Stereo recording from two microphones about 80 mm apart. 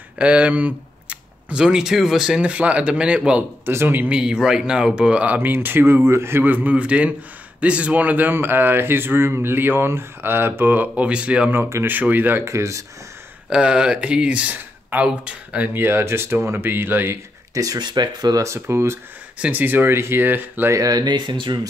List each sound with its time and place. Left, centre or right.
0.2 s speech: centre
3.6 s a man's voice: right
4.1 s a man's voice: centre; by 12.4 s right
12.4 s speech: right
13.5 s a man's voice: centre; by 17.2 s right
17.6 s speech: right
18.4 s speech: right
19.3 s a man's voice: centre
20.7 s speech: right